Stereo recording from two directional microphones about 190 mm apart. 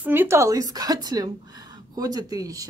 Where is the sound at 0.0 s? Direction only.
10° right (ahead or behind).